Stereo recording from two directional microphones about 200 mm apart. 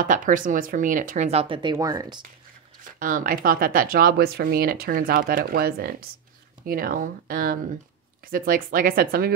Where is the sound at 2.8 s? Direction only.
45° right (ahead or behind).